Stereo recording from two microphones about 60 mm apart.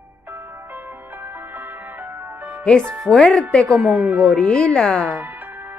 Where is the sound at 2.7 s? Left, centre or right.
Centre.